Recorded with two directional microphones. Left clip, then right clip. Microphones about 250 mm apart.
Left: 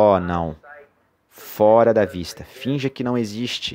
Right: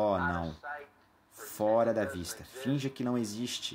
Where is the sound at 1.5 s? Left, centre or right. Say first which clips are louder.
Left 14 dB; left.